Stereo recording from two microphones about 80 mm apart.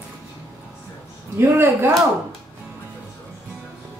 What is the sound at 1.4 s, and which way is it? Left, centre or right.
Speech, right.